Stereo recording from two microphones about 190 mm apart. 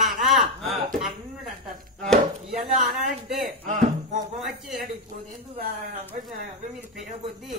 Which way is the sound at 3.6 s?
40° right (ahead or behind).